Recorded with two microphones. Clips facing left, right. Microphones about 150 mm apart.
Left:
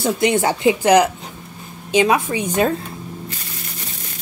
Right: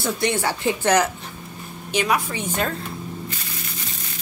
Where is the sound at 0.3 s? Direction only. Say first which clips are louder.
Left 6 dB; 20° left (ahead or behind).